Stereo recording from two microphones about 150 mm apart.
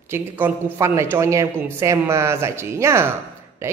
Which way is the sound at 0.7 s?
20° right (ahead or behind).